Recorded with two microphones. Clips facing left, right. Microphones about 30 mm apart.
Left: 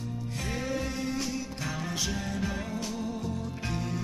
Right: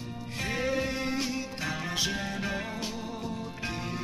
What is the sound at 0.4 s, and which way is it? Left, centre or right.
Music, right.